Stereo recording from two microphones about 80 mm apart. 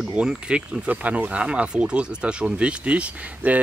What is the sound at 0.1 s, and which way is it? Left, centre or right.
Speech, centre.